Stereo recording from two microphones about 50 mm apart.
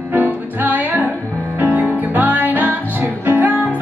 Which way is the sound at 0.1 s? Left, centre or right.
Right.